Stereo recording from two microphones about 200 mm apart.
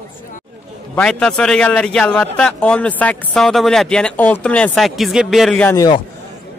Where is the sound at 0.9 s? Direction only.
5° left (ahead or behind).